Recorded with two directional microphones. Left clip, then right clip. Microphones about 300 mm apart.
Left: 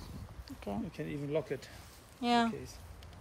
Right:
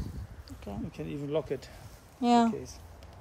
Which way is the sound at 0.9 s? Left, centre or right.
Centre.